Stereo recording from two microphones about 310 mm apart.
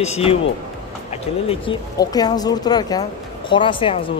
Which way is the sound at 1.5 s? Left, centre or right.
Centre.